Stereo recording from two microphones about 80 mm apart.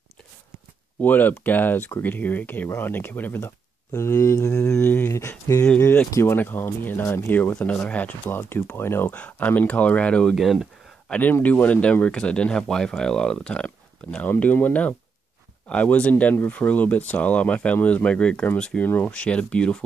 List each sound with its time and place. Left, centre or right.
1.0 s speech: left
6.3 s speech: left
7.5 s speech: centre
8.3 s speech: left
9.1 s speech: centre
10.3 s speech: centre
11.1 s speech: centre